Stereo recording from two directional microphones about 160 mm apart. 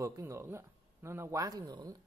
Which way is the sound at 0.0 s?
20° right (ahead or behind).